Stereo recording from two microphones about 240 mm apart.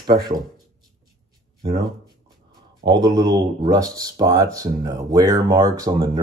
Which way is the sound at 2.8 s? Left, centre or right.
Centre.